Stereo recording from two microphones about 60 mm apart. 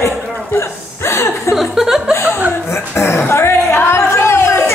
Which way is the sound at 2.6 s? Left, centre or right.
Left.